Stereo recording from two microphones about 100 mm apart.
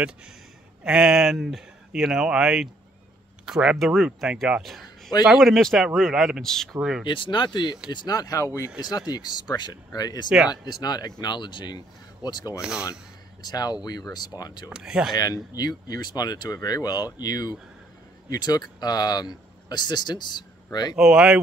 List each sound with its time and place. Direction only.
0.8 s speech: 10° right (ahead or behind)
6.8 s speech: 5° right (ahead or behind)
7.1 s speech: 55° left (ahead or behind)
14.7 s speech: 5° right (ahead or behind)
15.1 s speech: 40° left (ahead or behind)
20.9 s speech: 10° right (ahead or behind)